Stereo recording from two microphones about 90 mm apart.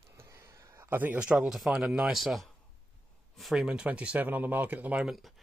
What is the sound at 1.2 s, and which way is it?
Speech, 10° right (ahead or behind).